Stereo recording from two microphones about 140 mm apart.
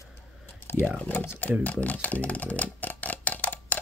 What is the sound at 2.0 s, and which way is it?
Clock, 10° left (ahead or behind).